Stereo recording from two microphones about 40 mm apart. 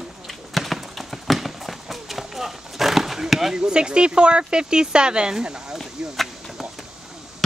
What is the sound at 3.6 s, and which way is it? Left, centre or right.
Speech, right.